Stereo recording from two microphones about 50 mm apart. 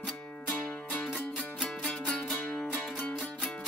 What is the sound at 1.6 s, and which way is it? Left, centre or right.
Music, centre.